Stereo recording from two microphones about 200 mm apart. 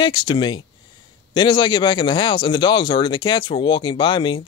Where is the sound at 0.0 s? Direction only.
20° left (ahead or behind).